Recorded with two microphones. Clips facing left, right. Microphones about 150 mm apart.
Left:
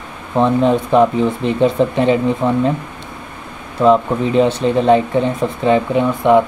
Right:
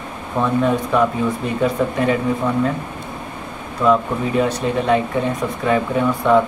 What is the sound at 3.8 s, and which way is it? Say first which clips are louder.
Speech: left 4 dB; 25° left (ahead or behind).